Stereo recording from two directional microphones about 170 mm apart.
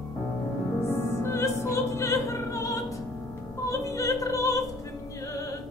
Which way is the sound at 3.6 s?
20° left (ahead or behind).